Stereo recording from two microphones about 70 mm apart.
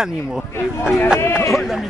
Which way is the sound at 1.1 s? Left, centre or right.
Left.